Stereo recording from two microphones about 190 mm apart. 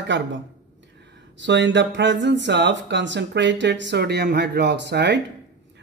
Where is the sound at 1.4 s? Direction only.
70° right (ahead or behind).